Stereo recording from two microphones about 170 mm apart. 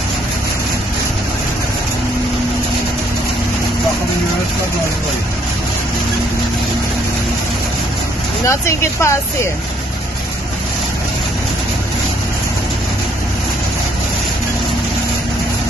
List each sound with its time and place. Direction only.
8.5 s speech: 15° left (ahead or behind)